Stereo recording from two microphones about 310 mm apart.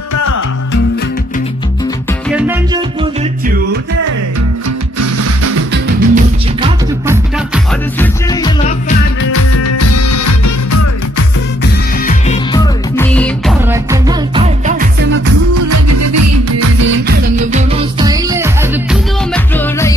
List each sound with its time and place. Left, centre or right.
2.2 s music: centre
5.0 s music: right
5.7 s music: right
7.3 s music: centre
8.3 s music: centre
9.2 s music: left
11.6 s music: left
12.5 s music: centre
13.7 s music: centre
15.7 s music: right
16.8 s music: right
17.5 s music: centre
19.3 s music: centre